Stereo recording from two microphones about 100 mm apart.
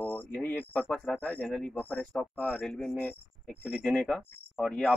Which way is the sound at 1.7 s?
15° left (ahead or behind).